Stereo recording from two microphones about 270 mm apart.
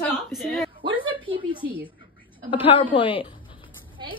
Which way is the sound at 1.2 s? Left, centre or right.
Centre.